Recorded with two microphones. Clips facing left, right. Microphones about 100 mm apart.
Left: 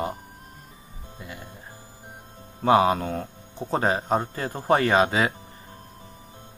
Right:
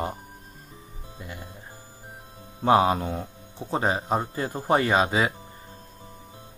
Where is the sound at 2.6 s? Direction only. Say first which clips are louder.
Left 1 dB; 25° right (ahead or behind); by 4.2 s 10° right (ahead or behind).